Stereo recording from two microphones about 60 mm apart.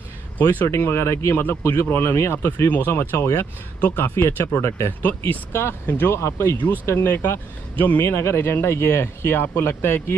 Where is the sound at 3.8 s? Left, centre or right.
Left.